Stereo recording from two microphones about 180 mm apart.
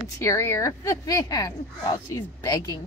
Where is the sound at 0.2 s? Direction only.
15° left (ahead or behind).